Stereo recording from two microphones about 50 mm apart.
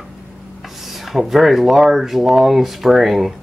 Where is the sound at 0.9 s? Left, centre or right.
Centre.